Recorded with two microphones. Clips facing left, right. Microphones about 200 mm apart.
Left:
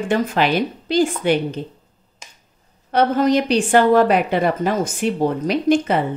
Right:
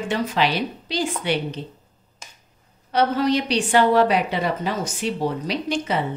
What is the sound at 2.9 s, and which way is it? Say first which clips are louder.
A woman's voice: left 4 dB; 50° left (ahead or behind).